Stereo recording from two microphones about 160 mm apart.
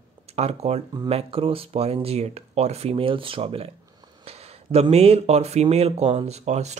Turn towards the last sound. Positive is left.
turn(degrees=-45)  # may be behind; listen again after turning